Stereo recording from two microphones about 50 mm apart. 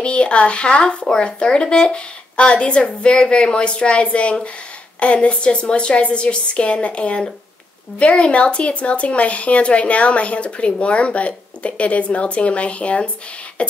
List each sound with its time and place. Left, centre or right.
0.0 s speech: left
13.6 s beatboxing: left